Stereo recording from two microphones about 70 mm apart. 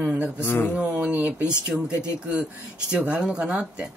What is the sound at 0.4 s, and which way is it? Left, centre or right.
Speech, left.